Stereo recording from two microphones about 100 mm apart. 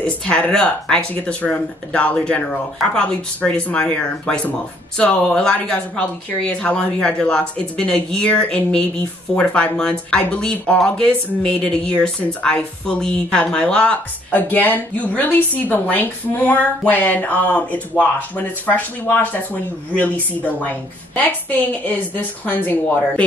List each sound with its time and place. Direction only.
0.0 s a woman's voice: 10° left (ahead or behind)